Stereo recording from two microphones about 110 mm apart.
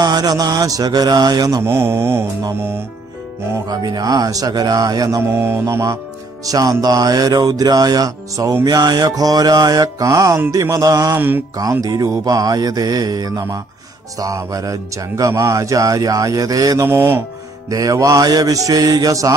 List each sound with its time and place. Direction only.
0.0 s speech: 35° right (ahead or behind)
1.6 s mantra: 20° right (ahead or behind)
3.6 s speech: 40° right (ahead or behind)
11.1 s mantra: 20° right (ahead or behind)
11.5 s speech: 30° right (ahead or behind)
16.8 s mantra: 20° right (ahead or behind)
17.6 s speech: 35° right (ahead or behind)